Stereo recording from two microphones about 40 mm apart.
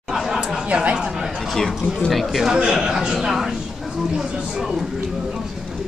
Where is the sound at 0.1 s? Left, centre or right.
Centre.